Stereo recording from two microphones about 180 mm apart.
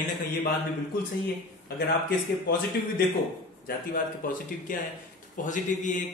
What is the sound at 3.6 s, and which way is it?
A man's voice, 50° left (ahead or behind).